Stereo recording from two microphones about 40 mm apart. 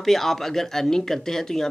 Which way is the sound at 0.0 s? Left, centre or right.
Centre.